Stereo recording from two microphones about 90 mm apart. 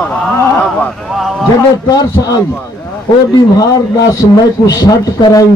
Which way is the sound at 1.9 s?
50° left (ahead or behind).